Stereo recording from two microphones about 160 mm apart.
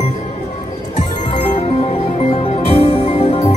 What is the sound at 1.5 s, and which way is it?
Music, 40° left (ahead or behind).